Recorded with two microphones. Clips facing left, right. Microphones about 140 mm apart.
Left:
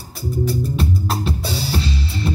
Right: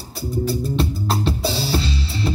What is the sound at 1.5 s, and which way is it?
Music, 30° right (ahead or behind).